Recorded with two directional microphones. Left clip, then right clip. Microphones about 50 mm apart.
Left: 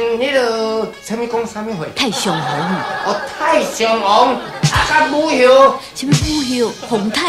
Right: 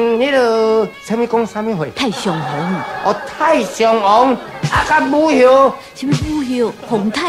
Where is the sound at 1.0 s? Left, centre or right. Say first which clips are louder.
Right 3 dB; centre.